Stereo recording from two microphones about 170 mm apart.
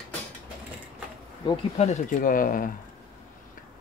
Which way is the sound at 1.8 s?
45° left (ahead or behind).